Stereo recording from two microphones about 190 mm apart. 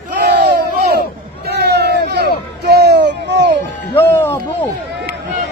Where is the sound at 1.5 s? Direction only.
60° right (ahead or behind).